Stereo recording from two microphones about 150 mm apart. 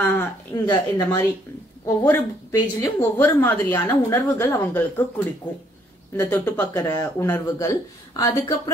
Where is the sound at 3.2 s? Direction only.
15° left (ahead or behind).